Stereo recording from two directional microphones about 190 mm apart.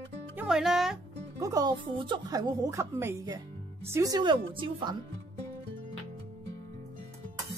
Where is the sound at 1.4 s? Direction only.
20° right (ahead or behind).